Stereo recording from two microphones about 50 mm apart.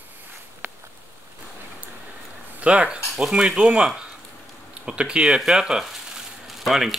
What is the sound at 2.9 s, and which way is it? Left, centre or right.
Speech, centre.